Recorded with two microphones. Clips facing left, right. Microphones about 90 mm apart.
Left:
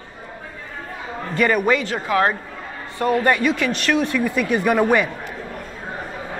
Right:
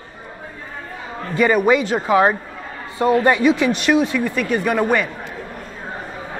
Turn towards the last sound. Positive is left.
turn(degrees=5)  # may be behind; listen again after turning